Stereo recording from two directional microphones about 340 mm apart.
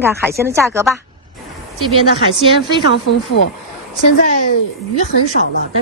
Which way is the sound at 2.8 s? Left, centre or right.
Left.